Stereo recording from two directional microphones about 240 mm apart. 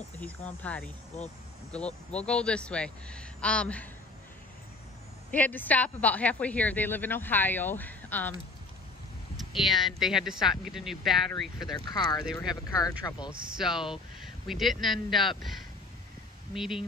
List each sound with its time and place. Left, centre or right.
0.2 s speech: centre
5.3 s speech: centre
9.4 s speech: centre
11.7 s speech: centre
13.3 s speech: centre
13.6 s speech: centre
16.5 s speech: centre